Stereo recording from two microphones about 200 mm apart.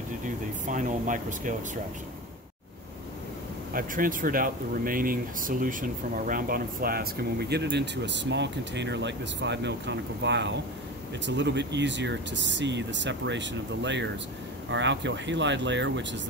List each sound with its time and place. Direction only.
0.7 s speech: 40° right (ahead or behind)
3.7 s speech: 45° right (ahead or behind); by 16.2 s 65° right (ahead or behind)